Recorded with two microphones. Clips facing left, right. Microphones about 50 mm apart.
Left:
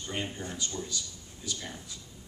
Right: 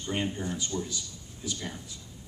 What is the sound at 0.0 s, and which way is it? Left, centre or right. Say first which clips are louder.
Speech: right 4 dB; centre.